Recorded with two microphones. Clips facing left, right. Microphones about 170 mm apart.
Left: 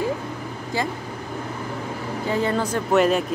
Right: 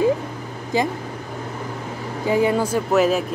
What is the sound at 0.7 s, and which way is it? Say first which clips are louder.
Speech: right 5 dB; 15° right (ahead or behind).